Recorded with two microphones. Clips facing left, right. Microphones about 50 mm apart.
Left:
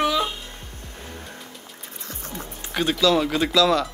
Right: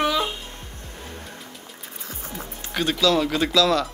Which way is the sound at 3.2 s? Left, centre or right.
Centre.